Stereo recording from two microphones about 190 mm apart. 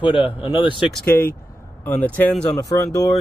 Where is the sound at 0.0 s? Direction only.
25° left (ahead or behind).